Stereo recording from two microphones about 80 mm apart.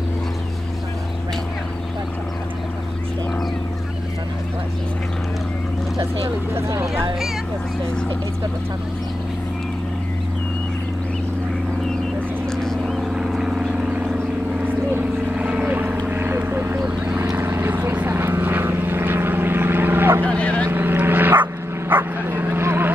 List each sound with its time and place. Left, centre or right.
12.4 s vehicle: centre
14.6 s vehicle: right
17.2 s vehicle: right
20.2 s vehicle: centre
20.7 s bow-wow: right